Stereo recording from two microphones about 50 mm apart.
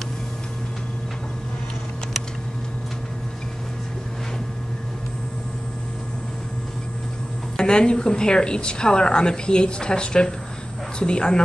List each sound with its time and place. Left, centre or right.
7.5 s a woman's voice: centre